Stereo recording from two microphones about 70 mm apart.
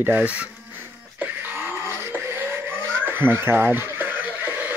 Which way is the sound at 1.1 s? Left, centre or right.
Right.